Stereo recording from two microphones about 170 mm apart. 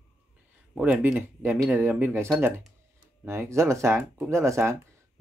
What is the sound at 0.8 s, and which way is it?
Speech, 5° right (ahead or behind).